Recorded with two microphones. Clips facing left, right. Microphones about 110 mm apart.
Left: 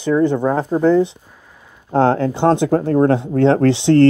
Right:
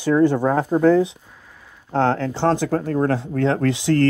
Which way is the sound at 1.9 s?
15° left (ahead or behind).